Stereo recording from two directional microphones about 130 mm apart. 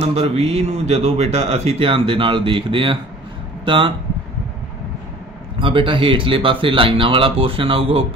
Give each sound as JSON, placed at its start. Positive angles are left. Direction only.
{"t": 0.0, "sound": "speech", "side_deg": -50}
{"t": 5.6, "sound": "speech", "side_deg": -40}